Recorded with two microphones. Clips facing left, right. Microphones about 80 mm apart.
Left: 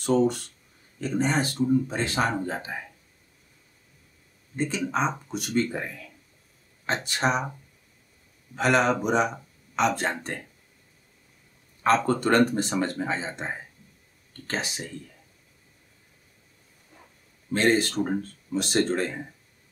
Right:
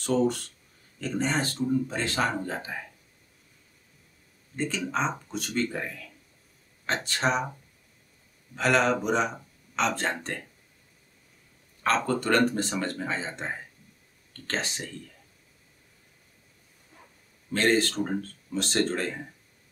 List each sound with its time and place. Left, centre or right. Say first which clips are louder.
1.0 s speech: left 3 dB; centre
4.6 s speech: left 2 dB; centre
8.5 s speech: left 1 dB; centre
11.8 s speech: left 4 dB; centre
14.3 s a sound: left 1 dB; centre
17.5 s speech: left 1 dB; centre